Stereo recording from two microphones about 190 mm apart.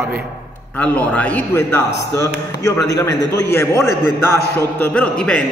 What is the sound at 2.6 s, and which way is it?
A man's voice, 20° left (ahead or behind).